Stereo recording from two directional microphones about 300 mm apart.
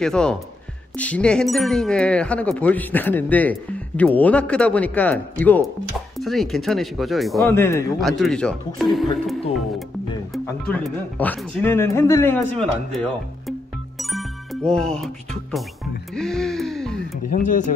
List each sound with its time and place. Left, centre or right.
0.0 s speech: centre
10.3 s speech: centre
16.2 s speech: centre
17.3 s speech: left